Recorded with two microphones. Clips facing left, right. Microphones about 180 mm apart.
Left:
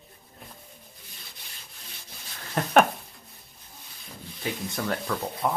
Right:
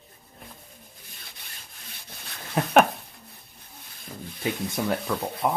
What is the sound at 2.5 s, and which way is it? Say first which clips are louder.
Speech: right 1 dB; centre (ahead or behind).